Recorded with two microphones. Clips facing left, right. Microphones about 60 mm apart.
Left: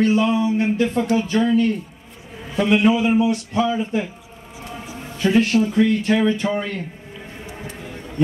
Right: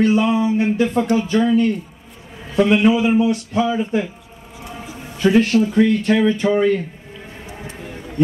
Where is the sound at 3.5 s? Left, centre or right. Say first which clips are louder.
Right 1 dB; centre.